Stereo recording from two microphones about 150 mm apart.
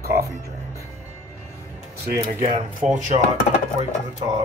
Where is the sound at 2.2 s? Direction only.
55° right (ahead or behind).